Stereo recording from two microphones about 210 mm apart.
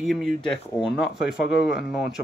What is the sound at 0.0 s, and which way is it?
Speech, centre (ahead or behind).